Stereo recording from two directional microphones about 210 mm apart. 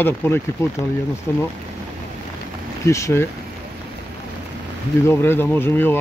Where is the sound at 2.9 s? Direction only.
15° left (ahead or behind).